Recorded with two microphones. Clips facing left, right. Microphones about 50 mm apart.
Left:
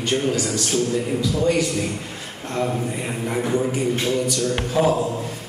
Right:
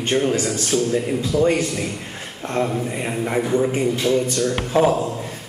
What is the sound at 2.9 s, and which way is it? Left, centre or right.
Speech, right.